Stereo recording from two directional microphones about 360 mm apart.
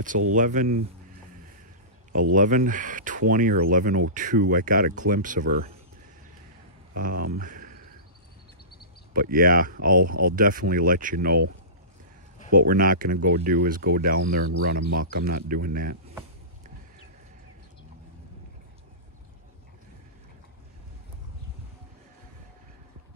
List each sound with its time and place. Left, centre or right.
0.3 s speech: right
2.3 s speech: right
6.9 s speech: right
7.3 s a sound: right
9.1 s speech: right
12.4 s speech: right